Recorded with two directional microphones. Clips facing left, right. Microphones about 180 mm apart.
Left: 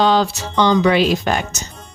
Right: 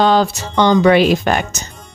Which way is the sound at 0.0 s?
50° right (ahead or behind).